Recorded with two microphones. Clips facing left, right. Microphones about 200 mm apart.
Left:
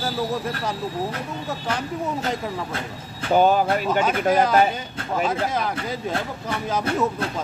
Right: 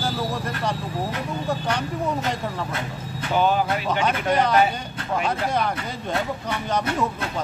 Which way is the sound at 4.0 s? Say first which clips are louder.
Left 1 dB; 5° left (ahead or behind).